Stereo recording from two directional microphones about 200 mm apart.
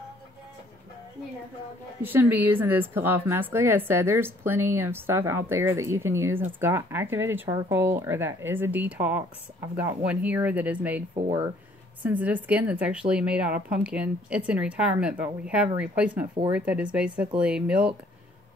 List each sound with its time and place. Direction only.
2.0 s a woman's voice: 10° right (ahead or behind)
11.1 s speech: 30° right (ahead or behind)
12.0 s a woman's voice: 10° right (ahead or behind)